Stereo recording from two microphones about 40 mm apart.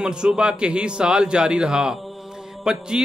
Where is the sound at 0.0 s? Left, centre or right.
Right.